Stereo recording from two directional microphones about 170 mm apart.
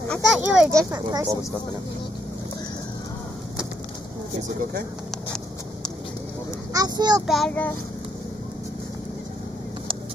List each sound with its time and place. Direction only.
0.1 s a child's voice: centre (ahead or behind)
0.7 s speech: 20° right (ahead or behind)
6.7 s speech: 20° right (ahead or behind)
7.2 s a child's voice: centre (ahead or behind)